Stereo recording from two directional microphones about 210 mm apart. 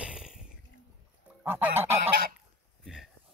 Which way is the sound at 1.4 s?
10° right (ahead or behind).